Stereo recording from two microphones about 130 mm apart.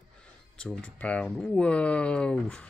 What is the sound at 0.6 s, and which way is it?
Speech, 10° left (ahead or behind).